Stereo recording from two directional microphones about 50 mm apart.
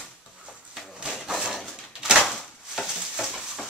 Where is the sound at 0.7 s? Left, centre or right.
Centre.